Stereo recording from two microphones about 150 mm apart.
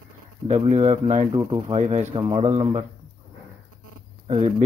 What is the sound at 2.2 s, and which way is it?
Speech, 35° right (ahead or behind).